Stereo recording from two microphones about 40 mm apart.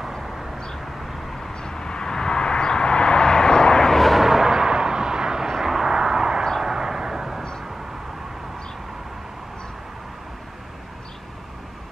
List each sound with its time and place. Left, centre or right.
1.5 s vehicle: centre
4.2 s a sound: centre
5.5 s vehicle: centre